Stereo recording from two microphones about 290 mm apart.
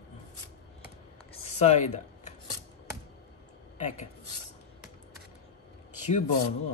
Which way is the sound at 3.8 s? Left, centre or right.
Left.